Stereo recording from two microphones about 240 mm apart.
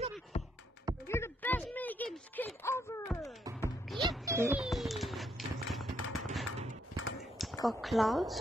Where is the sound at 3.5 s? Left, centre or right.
Centre.